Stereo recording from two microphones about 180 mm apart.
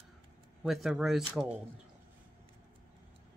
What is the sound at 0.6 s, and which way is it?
Speech, centre (ahead or behind).